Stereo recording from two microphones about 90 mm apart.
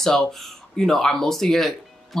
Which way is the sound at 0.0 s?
5° left (ahead or behind).